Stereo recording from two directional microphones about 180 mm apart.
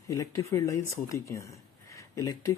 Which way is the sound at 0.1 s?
15° left (ahead or behind).